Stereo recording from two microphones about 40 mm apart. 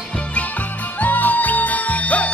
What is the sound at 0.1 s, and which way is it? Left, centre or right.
Music, left.